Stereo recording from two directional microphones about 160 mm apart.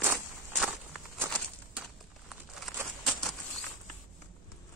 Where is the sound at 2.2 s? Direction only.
Centre (ahead or behind).